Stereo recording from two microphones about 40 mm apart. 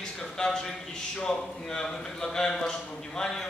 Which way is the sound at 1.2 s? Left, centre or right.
Centre.